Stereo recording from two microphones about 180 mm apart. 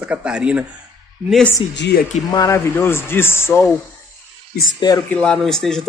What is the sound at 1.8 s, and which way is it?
Speech, 65° left (ahead or behind).